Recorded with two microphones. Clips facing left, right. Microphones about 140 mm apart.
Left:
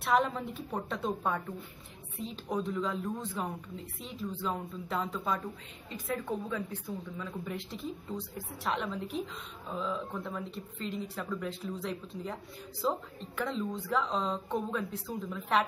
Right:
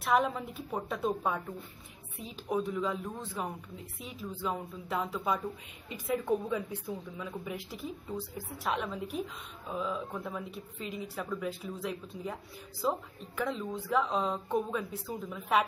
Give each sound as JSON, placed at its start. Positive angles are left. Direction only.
{"t": 0.0, "sound": "speech", "side_deg": 0}